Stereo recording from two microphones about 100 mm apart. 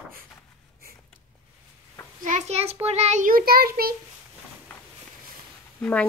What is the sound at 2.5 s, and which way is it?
Child singing, 90° right.